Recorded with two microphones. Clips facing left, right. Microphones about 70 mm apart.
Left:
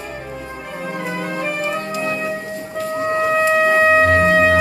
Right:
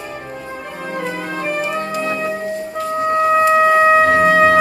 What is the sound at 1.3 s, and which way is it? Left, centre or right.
Music, centre.